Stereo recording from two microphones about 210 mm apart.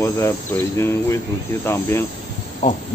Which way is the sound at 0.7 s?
15° left (ahead or behind).